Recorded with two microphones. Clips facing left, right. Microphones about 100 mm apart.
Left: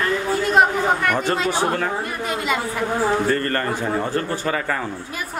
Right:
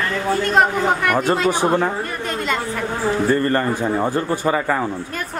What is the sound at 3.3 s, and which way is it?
Speech, 15° right (ahead or behind).